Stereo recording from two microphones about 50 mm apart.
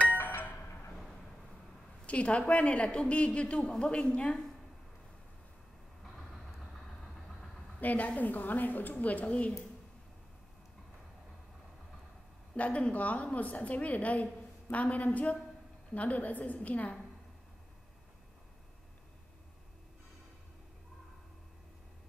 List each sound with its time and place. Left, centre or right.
0.2 s music: left
0.9 s a sound: centre
2.0 s a woman's voice: left
6.1 s vehicle: centre
7.8 s a woman's voice: left
12.5 s a woman's voice: left